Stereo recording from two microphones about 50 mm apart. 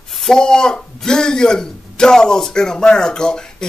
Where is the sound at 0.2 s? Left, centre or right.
Centre.